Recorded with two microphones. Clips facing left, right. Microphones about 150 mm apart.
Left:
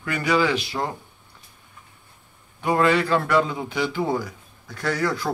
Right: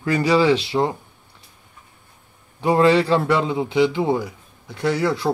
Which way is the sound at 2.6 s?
25° right (ahead or behind).